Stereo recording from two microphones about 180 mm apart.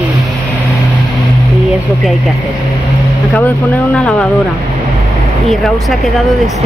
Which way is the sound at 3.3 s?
10° left (ahead or behind).